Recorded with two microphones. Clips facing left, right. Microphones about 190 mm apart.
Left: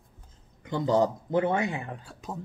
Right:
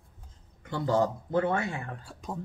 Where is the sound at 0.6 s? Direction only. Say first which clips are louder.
Left 2 dB; 20° left (ahead or behind).